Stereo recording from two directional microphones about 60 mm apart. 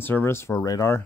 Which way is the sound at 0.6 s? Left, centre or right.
Left.